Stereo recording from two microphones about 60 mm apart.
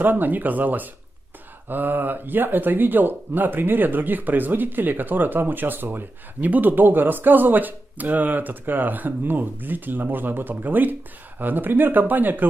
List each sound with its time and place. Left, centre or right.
0.0 s speech: right